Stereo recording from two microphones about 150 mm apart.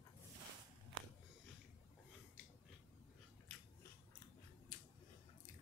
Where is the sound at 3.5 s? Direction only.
Centre (ahead or behind).